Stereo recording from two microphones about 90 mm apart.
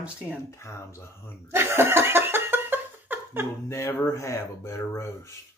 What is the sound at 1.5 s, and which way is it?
Laughter, 25° right (ahead or behind).